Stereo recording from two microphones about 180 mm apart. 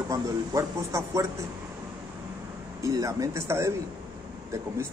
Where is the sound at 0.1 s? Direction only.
20° right (ahead or behind).